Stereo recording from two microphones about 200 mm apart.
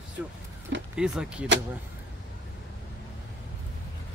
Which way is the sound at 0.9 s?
5° right (ahead or behind).